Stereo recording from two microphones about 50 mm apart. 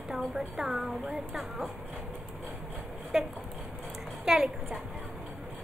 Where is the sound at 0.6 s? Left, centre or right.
Centre.